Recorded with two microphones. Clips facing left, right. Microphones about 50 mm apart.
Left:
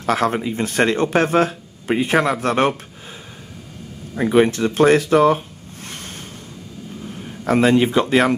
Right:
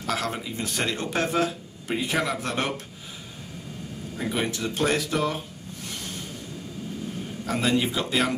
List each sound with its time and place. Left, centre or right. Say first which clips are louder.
0.0 s speech: left 10 dB; left
4.2 s speech: left 12 dB; left
7.4 s speech: left 10 dB; left